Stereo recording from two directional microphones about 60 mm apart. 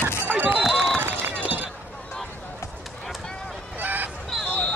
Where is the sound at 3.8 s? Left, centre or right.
Right.